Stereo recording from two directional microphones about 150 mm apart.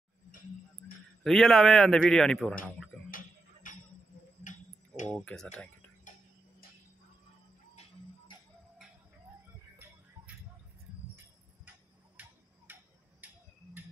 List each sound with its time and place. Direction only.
1.2 s a man's voice: centre (ahead or behind)
2.6 s tick-tock: 5° left (ahead or behind)
3.1 s a sound: 65° left (ahead or behind)
4.4 s clock: 55° left (ahead or behind)
5.1 s speech: 5° left (ahead or behind)
12.2 s tick-tock: 10° right (ahead or behind)